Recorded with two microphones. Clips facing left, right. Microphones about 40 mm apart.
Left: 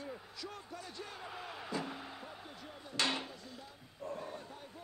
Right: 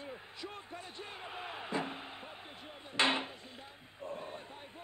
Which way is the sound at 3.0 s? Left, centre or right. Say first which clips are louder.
Right 5 dB; right.